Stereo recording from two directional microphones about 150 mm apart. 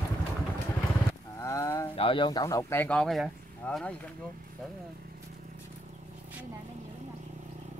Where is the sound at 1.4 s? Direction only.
20° left (ahead or behind).